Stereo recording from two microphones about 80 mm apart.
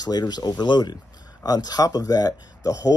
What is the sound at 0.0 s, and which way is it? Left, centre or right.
Speech, left.